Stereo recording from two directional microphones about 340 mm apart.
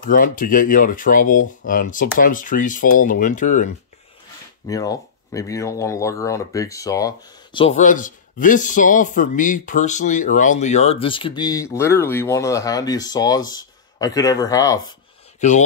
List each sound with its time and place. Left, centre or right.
0.1 s speech: left
4.6 s speech: centre